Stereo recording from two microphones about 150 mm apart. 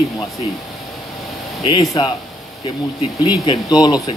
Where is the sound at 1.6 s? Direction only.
30° left (ahead or behind).